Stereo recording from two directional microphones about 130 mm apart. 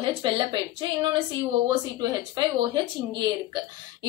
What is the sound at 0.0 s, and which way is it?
A woman's voice, 40° right (ahead or behind).